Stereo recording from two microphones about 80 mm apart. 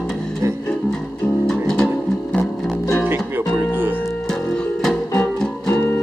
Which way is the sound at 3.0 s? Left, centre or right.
Right.